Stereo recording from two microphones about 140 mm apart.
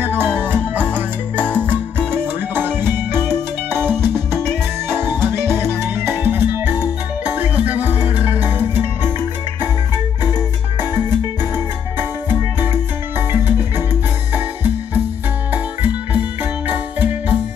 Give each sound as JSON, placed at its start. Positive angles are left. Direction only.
{"t": 0.0, "sound": "music", "side_deg": -15}
{"t": 15.5, "sound": "music", "side_deg": -10}